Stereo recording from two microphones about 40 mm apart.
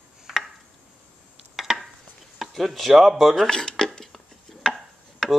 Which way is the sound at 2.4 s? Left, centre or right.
Centre.